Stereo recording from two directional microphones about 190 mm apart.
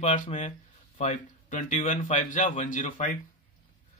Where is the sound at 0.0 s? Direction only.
40° left (ahead or behind).